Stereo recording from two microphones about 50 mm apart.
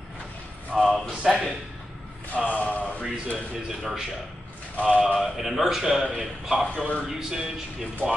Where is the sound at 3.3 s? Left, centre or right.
Centre.